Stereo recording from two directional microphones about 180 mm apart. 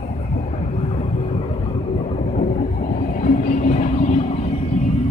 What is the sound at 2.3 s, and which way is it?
Train, 45° left (ahead or behind).